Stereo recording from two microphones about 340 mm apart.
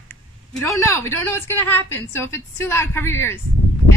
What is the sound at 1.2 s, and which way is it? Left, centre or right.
A woman's voice, centre.